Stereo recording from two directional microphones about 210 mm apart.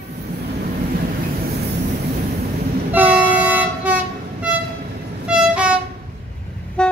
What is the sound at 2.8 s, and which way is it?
Train, 10° right (ahead or behind).